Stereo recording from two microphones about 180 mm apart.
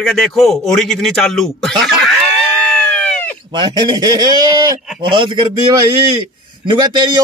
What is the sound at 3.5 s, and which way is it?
A man's voice, 20° right (ahead or behind).